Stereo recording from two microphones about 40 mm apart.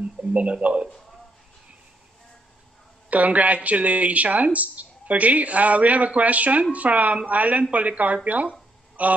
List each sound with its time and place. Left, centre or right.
0.0 s speech: right
3.1 s speech: right